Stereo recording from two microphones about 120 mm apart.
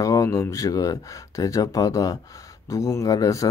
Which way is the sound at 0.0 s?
30° left (ahead or behind).